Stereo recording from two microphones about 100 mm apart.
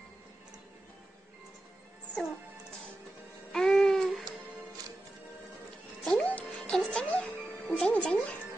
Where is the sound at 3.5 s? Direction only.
5° left (ahead or behind).